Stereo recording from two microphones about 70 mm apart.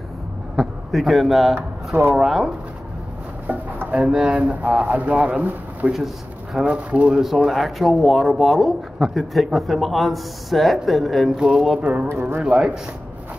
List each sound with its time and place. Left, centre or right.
0.6 s speech: centre
3.4 s speech: centre
5.9 s speech: centre
6.7 s speech: centre
7.2 s speech: centre
12.1 s speech: right
12.4 s speech: centre